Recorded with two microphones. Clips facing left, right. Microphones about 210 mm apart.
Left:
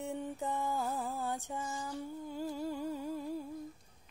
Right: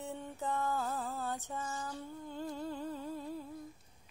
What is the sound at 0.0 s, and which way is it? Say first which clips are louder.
Mantra: left 3 dB; 15° left (ahead or behind).